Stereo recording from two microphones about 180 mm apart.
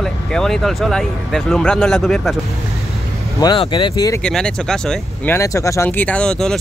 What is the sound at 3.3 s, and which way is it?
Speech, 25° left (ahead or behind).